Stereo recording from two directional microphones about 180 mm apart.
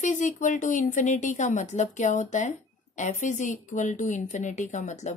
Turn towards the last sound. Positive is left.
turn(degrees=40)  # may be behind; listen again after turning